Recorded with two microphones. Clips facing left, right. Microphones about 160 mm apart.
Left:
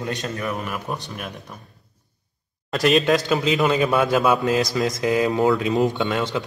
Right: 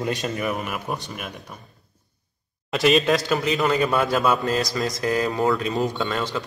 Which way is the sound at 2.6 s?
Centre (ahead or behind).